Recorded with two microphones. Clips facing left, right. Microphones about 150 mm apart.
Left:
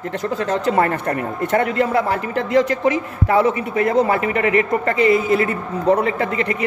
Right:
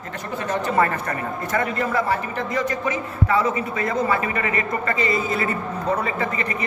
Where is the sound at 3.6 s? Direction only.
65° left (ahead or behind).